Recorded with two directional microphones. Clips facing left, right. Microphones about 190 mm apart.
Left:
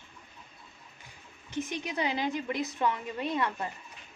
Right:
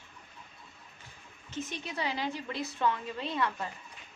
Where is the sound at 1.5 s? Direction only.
15° left (ahead or behind).